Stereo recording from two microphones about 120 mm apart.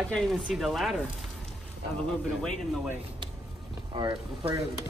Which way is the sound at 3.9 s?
45° right (ahead or behind).